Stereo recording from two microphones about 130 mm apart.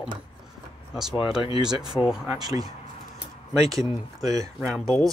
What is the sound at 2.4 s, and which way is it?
Speech, 30° right (ahead or behind).